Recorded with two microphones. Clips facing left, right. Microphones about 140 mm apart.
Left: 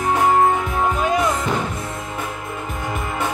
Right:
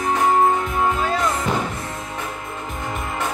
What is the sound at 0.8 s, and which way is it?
Music, 15° left (ahead or behind).